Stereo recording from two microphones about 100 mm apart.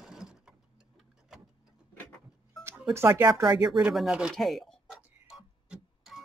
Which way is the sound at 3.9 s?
5° right (ahead or behind).